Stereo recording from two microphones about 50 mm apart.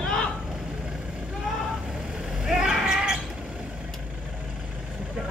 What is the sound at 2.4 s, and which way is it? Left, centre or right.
Vehicle, centre.